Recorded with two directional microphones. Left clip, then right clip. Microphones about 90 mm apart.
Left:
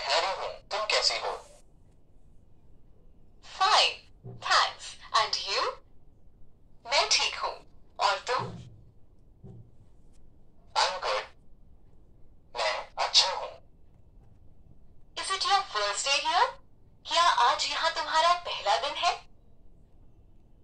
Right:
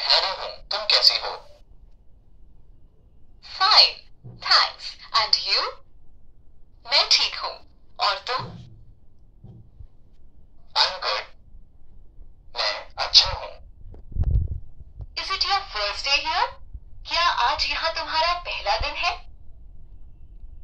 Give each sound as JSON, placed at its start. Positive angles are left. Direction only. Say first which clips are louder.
{"t": 0.0, "sound": "a sound", "louder": "right 6 dB", "side_deg": 20}
{"t": 3.3, "sound": "a sound", "louder": "right 7 dB", "side_deg": 15}
{"t": 4.4, "sound": "speech", "louder": "right 6 dB", "side_deg": 20}
{"t": 6.8, "sound": "a woman's voice", "louder": "right 6 dB", "side_deg": 30}
{"t": 10.7, "sound": "bird", "louder": "right 5 dB", "side_deg": 30}
{"t": 12.5, "sound": "crow", "louder": "right 3 dB", "side_deg": 40}
{"t": 15.2, "sound": "speech", "louder": "right 2 dB", "side_deg": 45}